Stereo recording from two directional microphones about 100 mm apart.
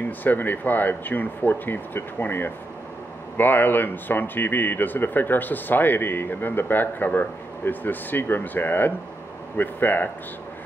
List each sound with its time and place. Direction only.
0.0 s speech: 20° left (ahead or behind)